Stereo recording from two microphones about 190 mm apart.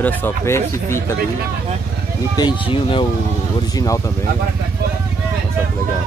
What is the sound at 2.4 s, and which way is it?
Speech, 25° left (ahead or behind).